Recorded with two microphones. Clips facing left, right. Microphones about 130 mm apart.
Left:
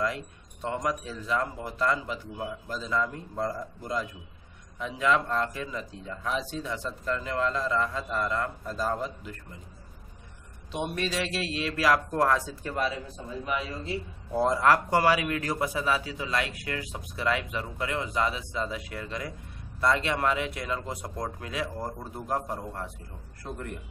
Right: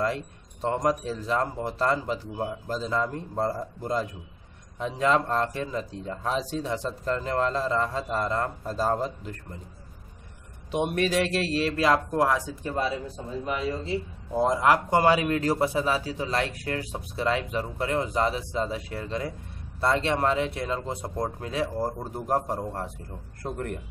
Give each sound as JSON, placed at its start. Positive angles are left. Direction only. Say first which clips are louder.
{"t": 0.0, "sound": "speech", "louder": "right 3 dB", "side_deg": -35}
{"t": 10.7, "sound": "speech", "louder": "right 6 dB", "side_deg": -50}
{"t": 12.7, "sound": "a man's voice", "louder": "right 2 dB", "side_deg": -30}